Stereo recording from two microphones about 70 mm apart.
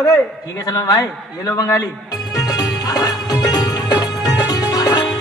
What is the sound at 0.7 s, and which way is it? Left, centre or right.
A man's voice, left.